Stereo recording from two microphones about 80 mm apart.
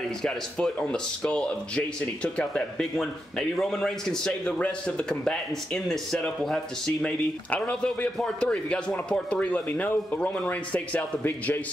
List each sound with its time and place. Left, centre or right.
0.2 s a man's voice: centre